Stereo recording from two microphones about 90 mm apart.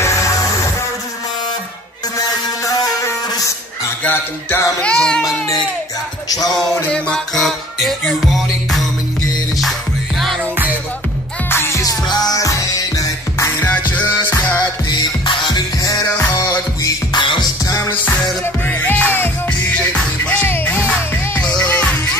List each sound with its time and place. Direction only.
0.0 s music: 35° left (ahead or behind)
2.1 s a sound: 40° left (ahead or behind)
4.0 s music: 20° left (ahead or behind)
4.8 s a sound: 10° left (ahead or behind)
6.2 s music: 45° left (ahead or behind)
6.9 s music: 5° left (ahead or behind)
11.5 s music: 25° left (ahead or behind)
11.8 s music: 45° left (ahead or behind)
13.6 s music: 20° left (ahead or behind)
14.9 s music: 55° left (ahead or behind)
15.8 s music: 40° left (ahead or behind)
17.8 s music: 20° left (ahead or behind)